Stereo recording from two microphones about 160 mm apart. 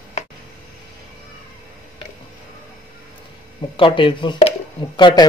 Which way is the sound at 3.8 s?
30° left (ahead or behind).